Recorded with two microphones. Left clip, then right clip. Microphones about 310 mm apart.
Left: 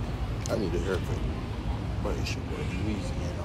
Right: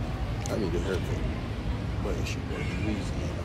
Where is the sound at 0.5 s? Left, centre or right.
Centre.